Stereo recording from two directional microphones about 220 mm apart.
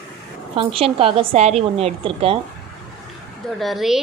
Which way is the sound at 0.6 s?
25° right (ahead or behind).